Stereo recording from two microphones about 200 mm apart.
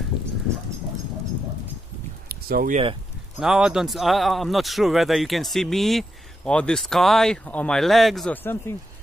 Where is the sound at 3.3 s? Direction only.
5° right (ahead or behind).